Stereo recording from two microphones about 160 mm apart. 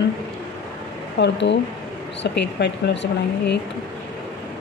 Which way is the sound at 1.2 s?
90° left.